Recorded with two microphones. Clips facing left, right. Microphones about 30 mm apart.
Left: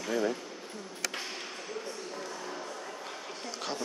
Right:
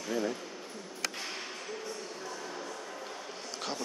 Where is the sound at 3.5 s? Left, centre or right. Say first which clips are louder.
Left 1 dB; centre.